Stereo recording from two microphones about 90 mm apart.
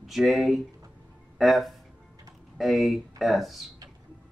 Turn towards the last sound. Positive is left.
turn(degrees=0)  # may be behind; listen again after turning